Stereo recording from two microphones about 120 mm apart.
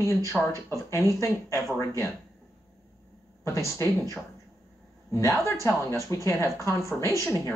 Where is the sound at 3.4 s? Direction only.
25° left (ahead or behind).